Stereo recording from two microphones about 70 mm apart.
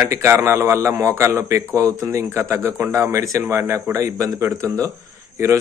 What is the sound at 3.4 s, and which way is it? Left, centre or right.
Speech, right.